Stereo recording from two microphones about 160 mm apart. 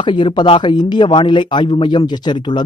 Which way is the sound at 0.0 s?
30° left (ahead or behind).